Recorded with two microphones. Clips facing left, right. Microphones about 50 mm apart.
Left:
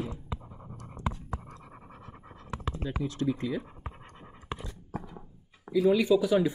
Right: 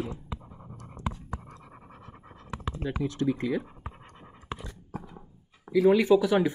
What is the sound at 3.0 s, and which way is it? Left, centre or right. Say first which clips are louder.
Speech: right 2 dB; right.